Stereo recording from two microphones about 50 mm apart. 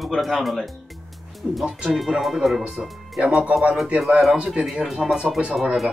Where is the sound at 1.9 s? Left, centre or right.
Centre.